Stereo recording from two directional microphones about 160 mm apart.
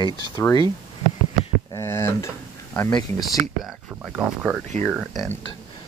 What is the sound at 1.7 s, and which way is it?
Speech, 15° left (ahead or behind).